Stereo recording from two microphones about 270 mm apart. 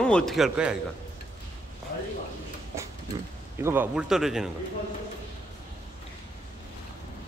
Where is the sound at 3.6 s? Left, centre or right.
Centre.